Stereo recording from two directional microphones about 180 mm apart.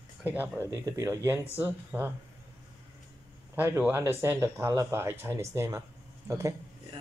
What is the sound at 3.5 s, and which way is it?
Speech, 10° right (ahead or behind).